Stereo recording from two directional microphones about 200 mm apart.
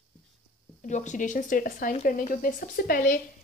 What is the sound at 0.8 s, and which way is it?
Speech, 35° left (ahead or behind).